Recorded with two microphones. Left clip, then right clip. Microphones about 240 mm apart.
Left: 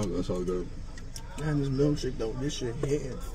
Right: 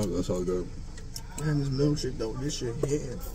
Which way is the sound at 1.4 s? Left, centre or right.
Left.